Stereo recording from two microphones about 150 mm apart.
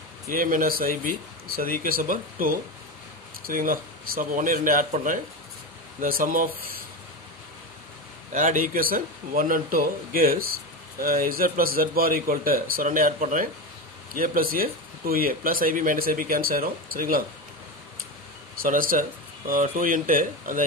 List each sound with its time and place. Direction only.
0.3 s speech: 70° right (ahead or behind)
8.3 s speech: 60° right (ahead or behind)
14.1 s speech: 70° right (ahead or behind)
18.6 s speech: 70° right (ahead or behind)